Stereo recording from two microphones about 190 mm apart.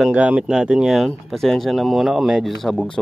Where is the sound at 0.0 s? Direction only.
5° right (ahead or behind).